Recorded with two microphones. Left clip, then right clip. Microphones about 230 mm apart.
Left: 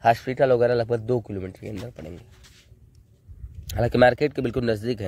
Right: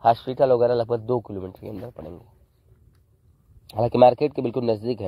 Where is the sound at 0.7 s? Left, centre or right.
Left.